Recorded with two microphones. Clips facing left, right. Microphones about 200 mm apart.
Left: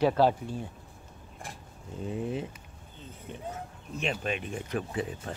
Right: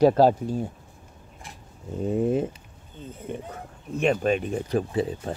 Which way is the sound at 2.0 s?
45° right (ahead or behind).